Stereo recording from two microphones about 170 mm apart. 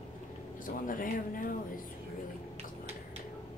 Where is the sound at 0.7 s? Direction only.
55° left (ahead or behind).